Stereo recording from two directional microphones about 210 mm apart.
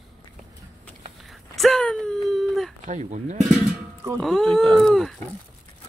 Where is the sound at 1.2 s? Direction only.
Centre (ahead or behind).